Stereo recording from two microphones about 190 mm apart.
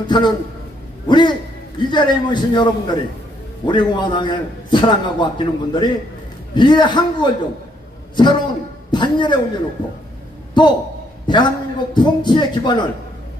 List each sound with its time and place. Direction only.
0.0 s a man's voice: 25° left (ahead or behind)
1.0 s a sound: 25° left (ahead or behind)
1.8 s a man's voice: 25° left (ahead or behind)
10.5 s a man's voice: 25° left (ahead or behind)